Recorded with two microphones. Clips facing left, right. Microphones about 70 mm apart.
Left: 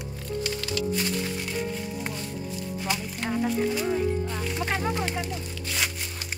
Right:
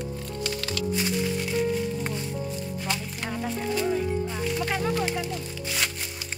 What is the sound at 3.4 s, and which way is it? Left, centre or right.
Speech, centre.